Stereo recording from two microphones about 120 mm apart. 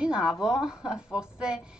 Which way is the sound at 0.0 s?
5° right (ahead or behind).